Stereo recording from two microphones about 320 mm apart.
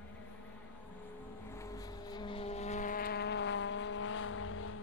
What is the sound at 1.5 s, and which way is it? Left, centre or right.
Vehicle, centre.